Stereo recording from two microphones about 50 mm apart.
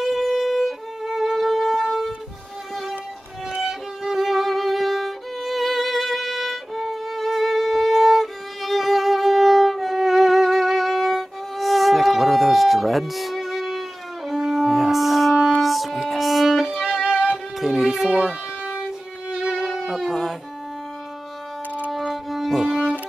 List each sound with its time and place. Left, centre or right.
0.0 s violin: centre
4.0 s music: centre
17.0 s music: centre
17.6 s music: centre
19.8 s music: centre
22.1 s music: centre